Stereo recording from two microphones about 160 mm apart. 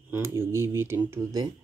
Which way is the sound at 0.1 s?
15° right (ahead or behind).